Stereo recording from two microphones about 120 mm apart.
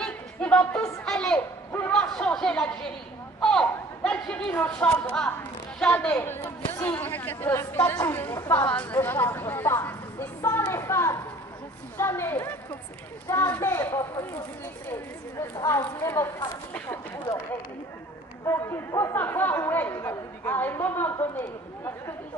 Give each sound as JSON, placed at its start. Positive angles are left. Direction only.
{"t": 0.0, "sound": "a sound", "side_deg": 10}
{"t": 1.0, "sound": "a woman's voice", "side_deg": 5}
{"t": 15.7, "sound": "speech", "side_deg": 20}
{"t": 18.5, "sound": "speech", "side_deg": 25}